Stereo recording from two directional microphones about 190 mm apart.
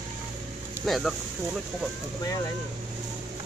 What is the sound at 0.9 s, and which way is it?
Speech, centre (ahead or behind).